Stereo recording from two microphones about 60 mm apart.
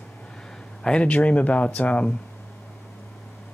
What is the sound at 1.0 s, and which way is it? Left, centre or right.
Speech, left.